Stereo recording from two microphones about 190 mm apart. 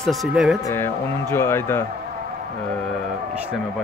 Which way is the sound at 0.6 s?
15° left (ahead or behind).